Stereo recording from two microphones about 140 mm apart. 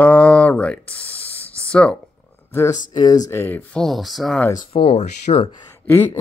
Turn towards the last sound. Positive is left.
turn(degrees=15)  # may be behind; listen again after turning